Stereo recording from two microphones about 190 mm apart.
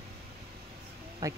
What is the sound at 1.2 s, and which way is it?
Speech, 15° right (ahead or behind).